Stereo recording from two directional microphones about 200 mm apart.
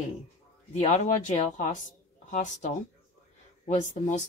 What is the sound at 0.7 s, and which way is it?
Speech, 35° left (ahead or behind).